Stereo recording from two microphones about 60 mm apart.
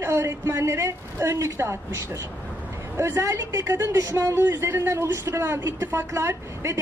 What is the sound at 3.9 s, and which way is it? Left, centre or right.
Speech, right.